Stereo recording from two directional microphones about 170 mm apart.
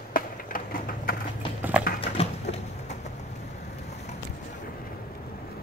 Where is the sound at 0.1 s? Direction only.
55° left (ahead or behind).